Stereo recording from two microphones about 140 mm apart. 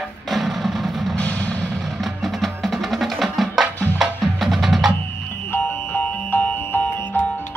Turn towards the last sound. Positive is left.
turn(degrees=10)  # may be behind; listen again after turning